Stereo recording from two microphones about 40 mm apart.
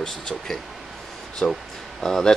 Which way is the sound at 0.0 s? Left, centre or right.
Centre.